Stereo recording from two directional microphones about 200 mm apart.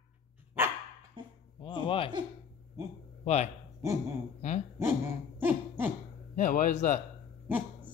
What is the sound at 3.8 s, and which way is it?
Speech, 15° right (ahead or behind).